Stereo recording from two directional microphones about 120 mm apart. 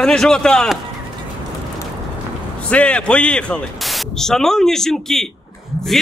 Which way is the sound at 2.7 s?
10° left (ahead or behind).